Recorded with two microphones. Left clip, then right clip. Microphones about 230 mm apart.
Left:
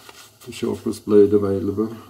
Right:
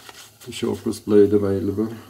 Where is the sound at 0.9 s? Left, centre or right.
Centre.